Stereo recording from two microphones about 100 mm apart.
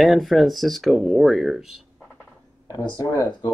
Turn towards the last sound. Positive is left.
turn(degrees=40)  # may be behind; listen again after turning